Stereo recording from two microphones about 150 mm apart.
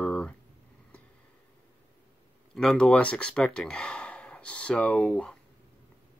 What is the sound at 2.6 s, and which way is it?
Speech, 5° left (ahead or behind).